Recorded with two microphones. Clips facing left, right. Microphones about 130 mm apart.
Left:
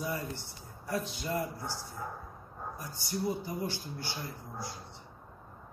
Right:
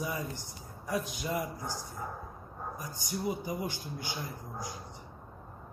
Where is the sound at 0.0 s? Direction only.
15° right (ahead or behind).